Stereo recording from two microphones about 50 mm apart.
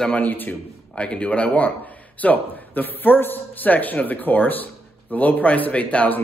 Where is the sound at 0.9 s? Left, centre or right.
Left.